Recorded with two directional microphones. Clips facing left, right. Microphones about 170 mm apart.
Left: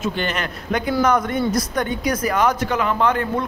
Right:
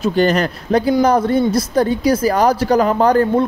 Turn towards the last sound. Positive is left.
turn(degrees=-35)  # may be behind; listen again after turning